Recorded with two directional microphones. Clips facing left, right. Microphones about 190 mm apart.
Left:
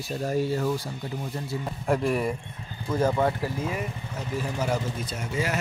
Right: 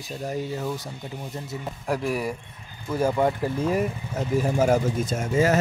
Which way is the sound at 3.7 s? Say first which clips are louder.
Right 7 dB; 45° right (ahead or behind).